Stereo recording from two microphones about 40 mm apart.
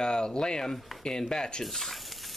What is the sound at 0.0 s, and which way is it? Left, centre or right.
Speech, centre.